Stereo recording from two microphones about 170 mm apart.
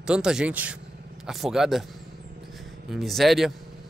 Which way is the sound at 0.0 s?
5° right (ahead or behind).